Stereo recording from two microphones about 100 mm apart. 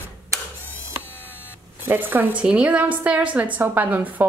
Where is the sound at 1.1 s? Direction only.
20° left (ahead or behind).